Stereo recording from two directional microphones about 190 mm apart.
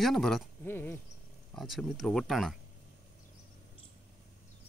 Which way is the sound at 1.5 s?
Centre (ahead or behind).